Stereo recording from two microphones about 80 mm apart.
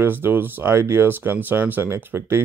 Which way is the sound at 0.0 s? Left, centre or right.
Right.